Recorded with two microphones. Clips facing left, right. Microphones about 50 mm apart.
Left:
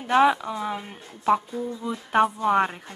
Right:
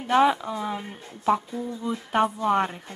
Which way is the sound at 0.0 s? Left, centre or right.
Centre.